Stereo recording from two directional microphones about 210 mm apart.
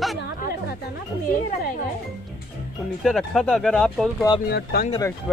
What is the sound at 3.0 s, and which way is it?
Speech, centre (ahead or behind).